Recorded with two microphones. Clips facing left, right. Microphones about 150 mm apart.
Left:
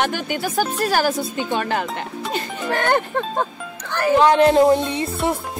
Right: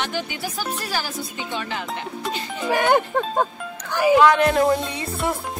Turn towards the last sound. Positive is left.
turn(degrees=25)  # may be behind; listen again after turning